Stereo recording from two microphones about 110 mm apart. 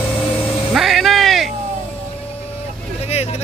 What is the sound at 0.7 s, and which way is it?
Music, centre (ahead or behind).